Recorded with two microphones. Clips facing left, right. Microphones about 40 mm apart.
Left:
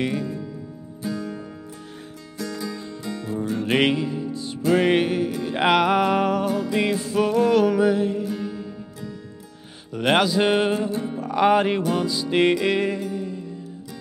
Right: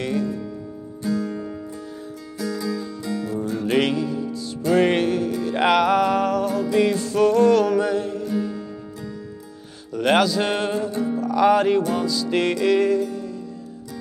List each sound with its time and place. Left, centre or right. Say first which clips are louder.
0.0 s music: right 1 dB; centre
4.6 s music: right 1 dB; centre
9.9 s speech: right 1 dB; centre
11.1 s music: right 1 dB; left